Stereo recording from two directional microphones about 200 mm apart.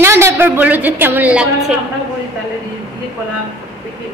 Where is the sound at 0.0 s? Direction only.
15° right (ahead or behind).